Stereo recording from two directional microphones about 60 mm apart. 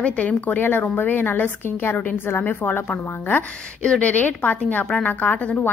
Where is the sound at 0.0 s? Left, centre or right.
Left.